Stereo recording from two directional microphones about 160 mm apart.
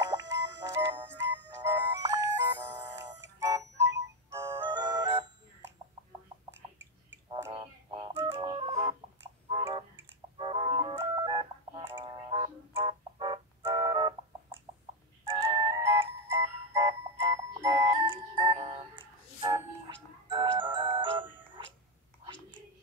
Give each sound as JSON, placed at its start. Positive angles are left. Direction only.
{"t": 0.0, "sound": "music", "side_deg": -20}
{"t": 1.6, "sound": "music", "side_deg": -20}
{"t": 3.7, "sound": "music", "side_deg": -90}
{"t": 4.3, "sound": "music", "side_deg": -15}
{"t": 7.5, "sound": "music", "side_deg": -30}
{"t": 11.0, "sound": "telephone dialing", "side_deg": -25}
{"t": 12.0, "sound": "music", "side_deg": -35}
{"t": 15.8, "sound": "music", "side_deg": -20}